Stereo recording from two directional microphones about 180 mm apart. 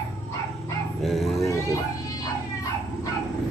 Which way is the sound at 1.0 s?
Centre (ahead or behind).